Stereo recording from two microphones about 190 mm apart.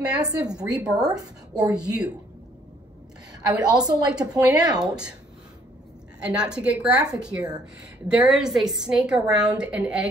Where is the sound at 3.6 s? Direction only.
20° right (ahead or behind).